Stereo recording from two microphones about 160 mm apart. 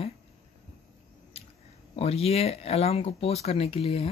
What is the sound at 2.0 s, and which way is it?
Speech, 40° left (ahead or behind).